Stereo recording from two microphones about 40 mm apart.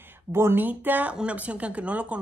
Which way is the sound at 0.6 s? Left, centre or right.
Right.